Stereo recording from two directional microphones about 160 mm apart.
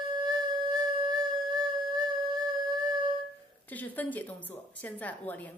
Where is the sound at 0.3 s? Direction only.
25° right (ahead or behind).